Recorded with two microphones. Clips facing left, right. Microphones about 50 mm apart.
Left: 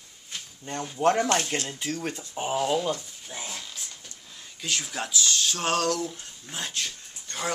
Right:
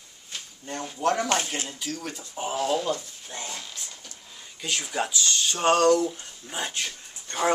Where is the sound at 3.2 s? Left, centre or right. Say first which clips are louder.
Right 1 dB; centre.